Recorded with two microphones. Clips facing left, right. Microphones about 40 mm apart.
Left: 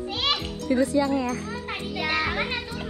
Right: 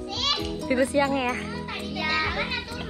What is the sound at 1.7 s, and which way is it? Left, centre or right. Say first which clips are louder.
Children playing: left 1 dB; centre.